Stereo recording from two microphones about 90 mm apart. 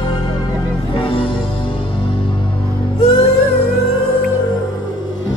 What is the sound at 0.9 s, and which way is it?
Music, 80° left.